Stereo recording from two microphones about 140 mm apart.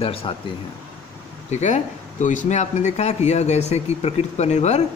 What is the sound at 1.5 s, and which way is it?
Speech, 55° left (ahead or behind).